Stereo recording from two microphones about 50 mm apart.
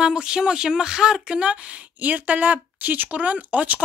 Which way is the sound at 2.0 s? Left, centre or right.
Right.